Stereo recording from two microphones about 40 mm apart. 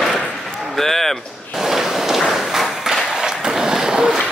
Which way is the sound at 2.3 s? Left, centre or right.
Centre.